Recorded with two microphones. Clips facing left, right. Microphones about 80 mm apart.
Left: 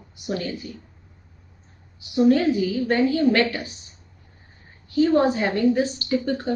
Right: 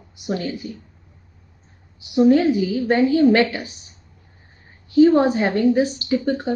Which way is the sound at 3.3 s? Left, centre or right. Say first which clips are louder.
Right 4 dB; right.